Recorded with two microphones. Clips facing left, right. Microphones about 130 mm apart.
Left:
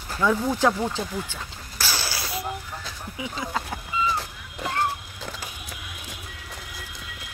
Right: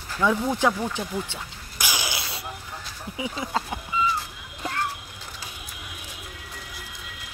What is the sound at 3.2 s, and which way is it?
Speech, 20° right (ahead or behind).